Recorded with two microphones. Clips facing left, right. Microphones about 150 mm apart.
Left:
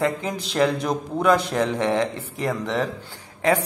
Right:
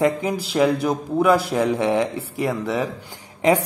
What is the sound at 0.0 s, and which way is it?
A man's voice, 10° right (ahead or behind).